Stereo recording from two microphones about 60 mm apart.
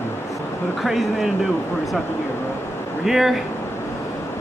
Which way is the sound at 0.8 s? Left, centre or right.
Centre.